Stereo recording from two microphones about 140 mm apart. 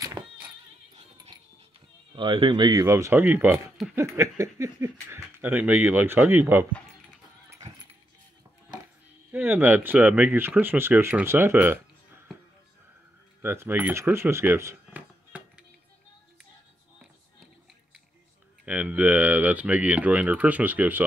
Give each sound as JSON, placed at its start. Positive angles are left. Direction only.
{"t": 1.3, "sound": "music", "side_deg": -30}
{"t": 2.1, "sound": "speech", "side_deg": -35}
{"t": 2.7, "sound": "speech", "side_deg": -20}
{"t": 3.5, "sound": "speech", "side_deg": 0}
{"t": 3.9, "sound": "a sound", "side_deg": -20}
{"t": 5.1, "sound": "speech", "side_deg": -15}
{"t": 9.3, "sound": "speech", "side_deg": -15}
{"t": 13.4, "sound": "speech", "side_deg": -15}
{"t": 18.7, "sound": "speech", "side_deg": -10}